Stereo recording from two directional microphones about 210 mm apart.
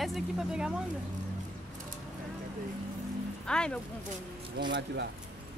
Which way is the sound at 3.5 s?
5° left (ahead or behind).